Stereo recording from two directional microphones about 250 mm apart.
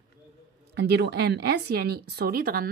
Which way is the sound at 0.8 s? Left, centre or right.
Right.